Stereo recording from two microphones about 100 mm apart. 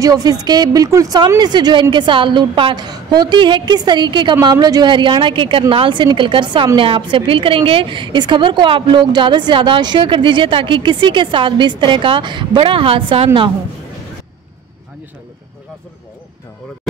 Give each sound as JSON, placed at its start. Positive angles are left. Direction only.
{"t": 0.0, "sound": "speech", "side_deg": -40}
{"t": 1.4, "sound": "a woman's voice", "side_deg": -45}